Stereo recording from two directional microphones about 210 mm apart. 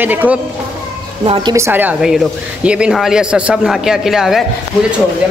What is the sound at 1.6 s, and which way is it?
Speech, 10° right (ahead or behind).